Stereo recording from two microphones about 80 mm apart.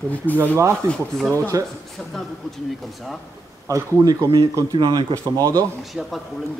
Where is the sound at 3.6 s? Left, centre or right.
Right.